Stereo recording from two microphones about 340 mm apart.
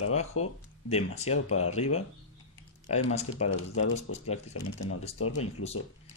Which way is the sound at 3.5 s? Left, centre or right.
Left.